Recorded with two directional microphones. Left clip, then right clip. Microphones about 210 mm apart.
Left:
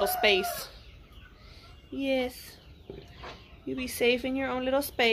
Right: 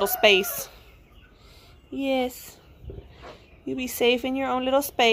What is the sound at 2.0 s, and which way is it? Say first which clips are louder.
Speech: right 4 dB; 25° right (ahead or behind).